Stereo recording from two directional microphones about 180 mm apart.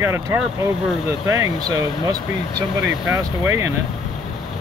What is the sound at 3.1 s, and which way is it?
Speech, 15° right (ahead or behind).